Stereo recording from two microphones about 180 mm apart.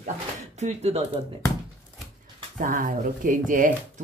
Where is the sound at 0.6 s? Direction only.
35° right (ahead or behind).